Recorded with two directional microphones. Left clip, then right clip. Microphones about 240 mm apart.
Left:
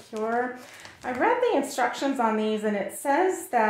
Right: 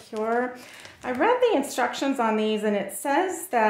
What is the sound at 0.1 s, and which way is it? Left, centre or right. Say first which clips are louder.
Speech: right 2 dB; right.